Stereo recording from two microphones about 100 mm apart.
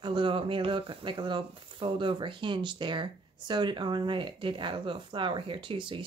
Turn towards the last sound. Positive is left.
turn(degrees=-55)  # may be behind; listen again after turning